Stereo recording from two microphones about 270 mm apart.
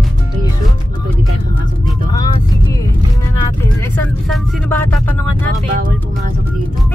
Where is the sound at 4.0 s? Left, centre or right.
Centre.